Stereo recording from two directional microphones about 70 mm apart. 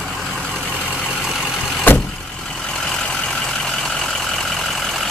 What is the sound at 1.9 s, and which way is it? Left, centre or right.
Vehicle, left.